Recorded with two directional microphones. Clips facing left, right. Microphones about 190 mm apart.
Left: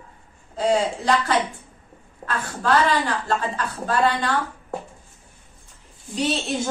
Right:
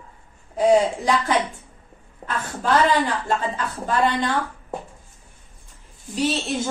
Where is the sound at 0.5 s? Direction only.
15° right (ahead or behind).